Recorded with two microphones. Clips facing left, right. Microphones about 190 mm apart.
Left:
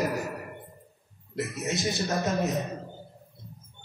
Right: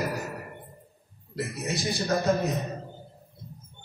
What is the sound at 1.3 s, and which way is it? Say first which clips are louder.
Speech: left 1 dB; 20° left (ahead or behind).